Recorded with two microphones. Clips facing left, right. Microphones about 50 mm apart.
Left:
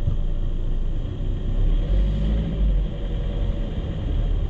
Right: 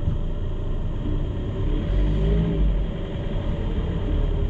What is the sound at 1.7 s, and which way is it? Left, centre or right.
Vehicle, centre.